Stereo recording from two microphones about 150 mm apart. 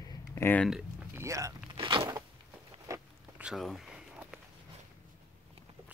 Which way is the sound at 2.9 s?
20° right (ahead or behind).